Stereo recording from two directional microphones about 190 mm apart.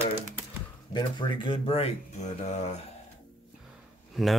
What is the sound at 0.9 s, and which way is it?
Speech, 25° left (ahead or behind).